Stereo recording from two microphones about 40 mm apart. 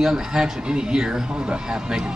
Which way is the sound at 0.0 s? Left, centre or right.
Centre.